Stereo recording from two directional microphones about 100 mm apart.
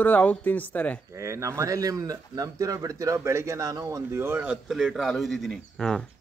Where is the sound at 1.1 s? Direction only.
30° right (ahead or behind).